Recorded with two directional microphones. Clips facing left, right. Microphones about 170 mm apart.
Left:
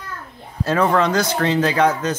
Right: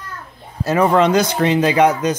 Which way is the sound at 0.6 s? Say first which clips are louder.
Right 3 dB; 10° right (ahead or behind).